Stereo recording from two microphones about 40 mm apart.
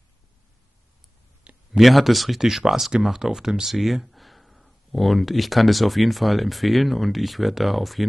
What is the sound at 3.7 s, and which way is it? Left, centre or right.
Speech, centre.